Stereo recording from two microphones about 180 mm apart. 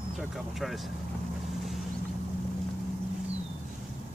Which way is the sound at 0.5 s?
Centre (ahead or behind).